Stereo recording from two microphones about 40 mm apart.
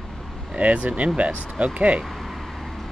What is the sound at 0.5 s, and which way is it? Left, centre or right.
Speech, right.